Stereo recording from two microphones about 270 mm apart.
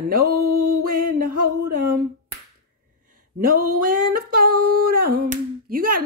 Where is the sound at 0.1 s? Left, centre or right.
Right.